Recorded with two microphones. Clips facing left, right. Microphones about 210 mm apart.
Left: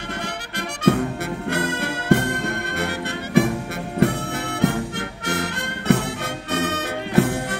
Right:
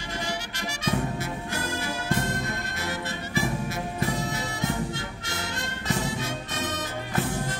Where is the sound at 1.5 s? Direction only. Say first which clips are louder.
Left 9 dB; 65° left (ahead or behind).